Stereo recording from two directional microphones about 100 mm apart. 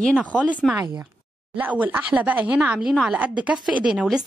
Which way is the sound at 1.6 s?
15° right (ahead or behind).